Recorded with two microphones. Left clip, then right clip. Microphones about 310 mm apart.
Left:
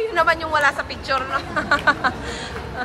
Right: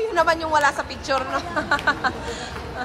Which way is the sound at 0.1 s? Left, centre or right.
Centre.